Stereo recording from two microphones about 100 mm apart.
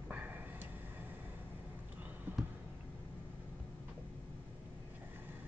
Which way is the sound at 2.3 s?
15° right (ahead or behind).